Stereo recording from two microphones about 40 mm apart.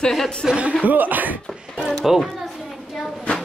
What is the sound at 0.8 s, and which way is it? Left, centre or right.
Speech, right.